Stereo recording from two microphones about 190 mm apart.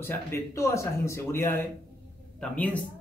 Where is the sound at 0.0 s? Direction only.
15° left (ahead or behind).